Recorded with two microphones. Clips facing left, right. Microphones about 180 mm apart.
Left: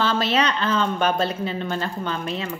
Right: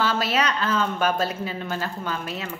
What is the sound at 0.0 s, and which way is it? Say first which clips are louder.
A woman's voice: left 2 dB; 10° right (ahead or behind).